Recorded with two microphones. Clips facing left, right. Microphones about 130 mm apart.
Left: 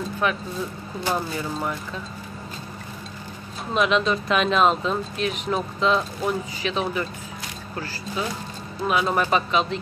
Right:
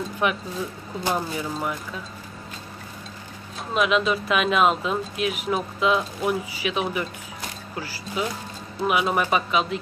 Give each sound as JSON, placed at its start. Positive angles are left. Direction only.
{"t": 0.2, "sound": "speech", "side_deg": -20}
{"t": 1.1, "sound": "speech", "side_deg": -5}
{"t": 3.7, "sound": "speech", "side_deg": -5}